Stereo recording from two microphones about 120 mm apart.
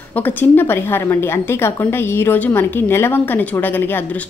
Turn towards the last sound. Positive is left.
turn(degrees=15)  # may be behind; listen again after turning